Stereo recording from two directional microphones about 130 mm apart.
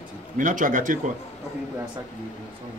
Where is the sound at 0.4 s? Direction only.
90° right.